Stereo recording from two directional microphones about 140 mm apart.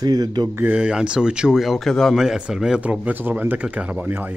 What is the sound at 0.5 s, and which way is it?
Speech, 10° right (ahead or behind).